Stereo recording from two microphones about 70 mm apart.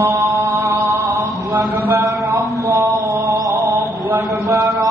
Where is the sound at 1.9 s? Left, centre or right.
Right.